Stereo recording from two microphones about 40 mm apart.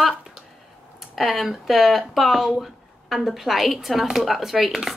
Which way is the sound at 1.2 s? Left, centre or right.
Centre.